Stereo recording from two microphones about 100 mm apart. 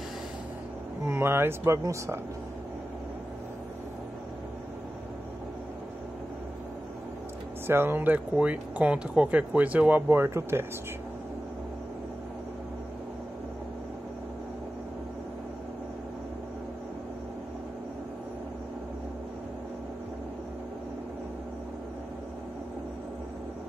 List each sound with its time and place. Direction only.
1.0 s speech: 25° right (ahead or behind)
7.6 s speech: 20° right (ahead or behind)